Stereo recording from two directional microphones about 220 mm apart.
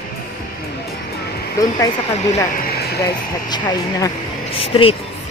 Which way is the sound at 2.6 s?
45° left (ahead or behind).